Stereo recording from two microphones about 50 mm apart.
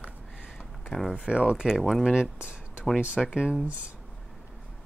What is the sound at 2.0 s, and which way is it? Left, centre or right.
Speech, centre.